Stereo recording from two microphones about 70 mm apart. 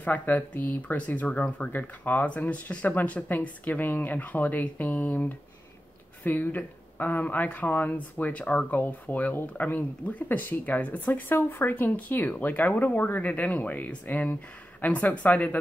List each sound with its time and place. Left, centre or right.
0.0 s speech: left